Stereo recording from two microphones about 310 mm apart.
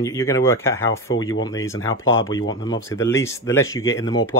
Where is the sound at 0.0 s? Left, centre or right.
Centre.